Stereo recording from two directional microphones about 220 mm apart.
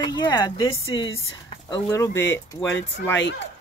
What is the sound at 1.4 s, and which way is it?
Speech, 15° left (ahead or behind).